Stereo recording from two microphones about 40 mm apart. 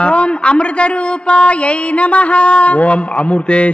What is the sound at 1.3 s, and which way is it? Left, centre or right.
Music, left.